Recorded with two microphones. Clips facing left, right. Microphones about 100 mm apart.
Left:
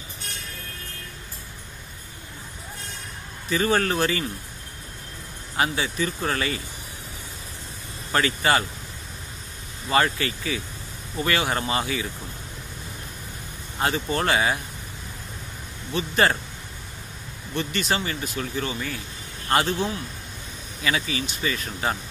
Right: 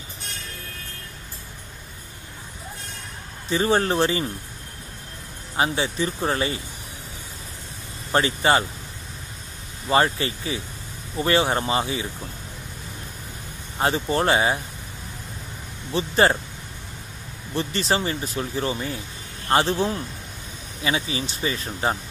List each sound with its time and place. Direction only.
3.4 s speech: 30° right (ahead or behind)
5.6 s speech: 30° right (ahead or behind)
8.1 s speech: 25° right (ahead or behind)
9.8 s speech: 30° right (ahead or behind)
13.7 s speech: 30° right (ahead or behind)
15.9 s speech: 30° right (ahead or behind)
17.6 s speech: 30° right (ahead or behind)